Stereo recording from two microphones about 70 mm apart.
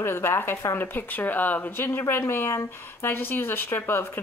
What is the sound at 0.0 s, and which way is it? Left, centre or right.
Speech, left.